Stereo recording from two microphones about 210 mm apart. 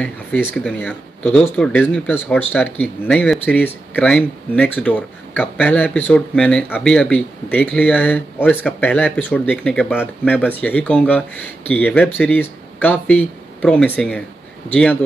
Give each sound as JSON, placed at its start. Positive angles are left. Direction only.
{"t": 0.4, "sound": "speech", "side_deg": 5}